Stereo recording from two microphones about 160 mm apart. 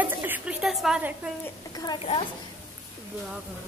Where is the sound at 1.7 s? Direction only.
25° left (ahead or behind).